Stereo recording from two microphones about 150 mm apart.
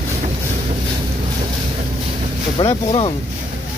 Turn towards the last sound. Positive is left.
turn(degrees=35)  # may be behind; listen again after turning